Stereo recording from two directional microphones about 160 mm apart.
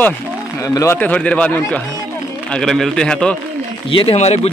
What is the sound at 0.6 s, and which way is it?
A man's voice, 20° left (ahead or behind).